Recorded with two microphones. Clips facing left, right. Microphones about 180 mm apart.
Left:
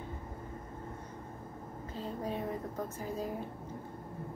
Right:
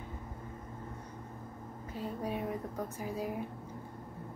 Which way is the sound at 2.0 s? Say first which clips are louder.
Right 1 dB; 10° right (ahead or behind).